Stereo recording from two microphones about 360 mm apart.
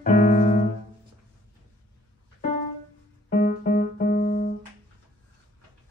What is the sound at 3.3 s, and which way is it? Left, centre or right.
Piano, left.